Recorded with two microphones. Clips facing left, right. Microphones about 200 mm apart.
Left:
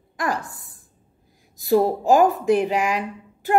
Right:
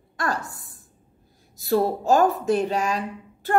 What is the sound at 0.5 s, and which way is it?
Speech, centre (ahead or behind).